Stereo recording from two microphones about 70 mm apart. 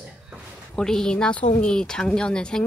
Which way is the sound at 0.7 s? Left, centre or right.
Centre.